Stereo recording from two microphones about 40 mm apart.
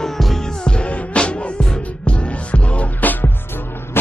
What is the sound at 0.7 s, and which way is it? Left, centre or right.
Music, left.